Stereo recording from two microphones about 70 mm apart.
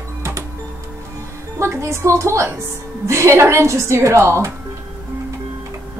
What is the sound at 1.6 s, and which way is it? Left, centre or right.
A woman's voice, right.